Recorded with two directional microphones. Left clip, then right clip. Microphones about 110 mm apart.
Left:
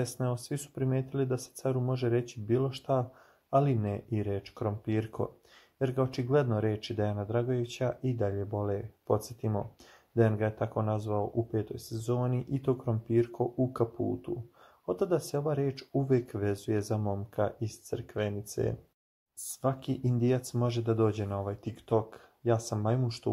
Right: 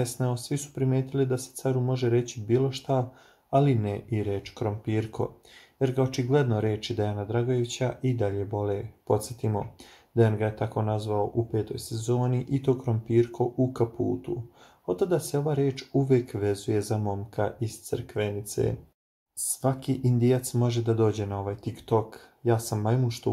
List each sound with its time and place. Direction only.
0.0 s speech: 40° left (ahead or behind)
19.6 s speech: 30° left (ahead or behind)